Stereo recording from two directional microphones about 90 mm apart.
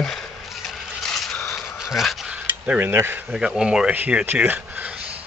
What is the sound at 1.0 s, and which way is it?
Vehicle, 5° left (ahead or behind).